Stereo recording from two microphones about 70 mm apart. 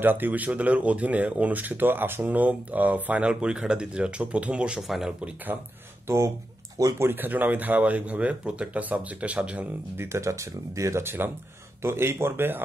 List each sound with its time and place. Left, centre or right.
0.0 s speech: right
4.8 s speech: centre
6.0 s speech: right
7.0 s speech: right
9.9 s speech: right